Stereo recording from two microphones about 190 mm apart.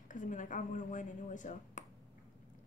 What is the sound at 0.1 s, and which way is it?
A woman's voice, 45° left (ahead or behind).